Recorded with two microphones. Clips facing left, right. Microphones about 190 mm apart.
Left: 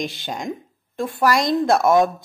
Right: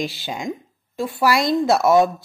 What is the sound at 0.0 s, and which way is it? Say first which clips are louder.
A woman's voice: right 1 dB; 5° right (ahead or behind).